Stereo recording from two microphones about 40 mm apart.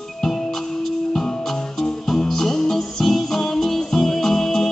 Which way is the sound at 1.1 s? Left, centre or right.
Centre.